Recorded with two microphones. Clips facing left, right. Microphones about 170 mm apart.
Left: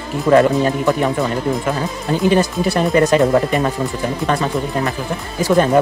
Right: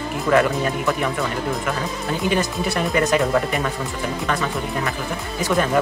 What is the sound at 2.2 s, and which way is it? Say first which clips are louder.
Speech: left 7 dB; 35° left (ahead or behind).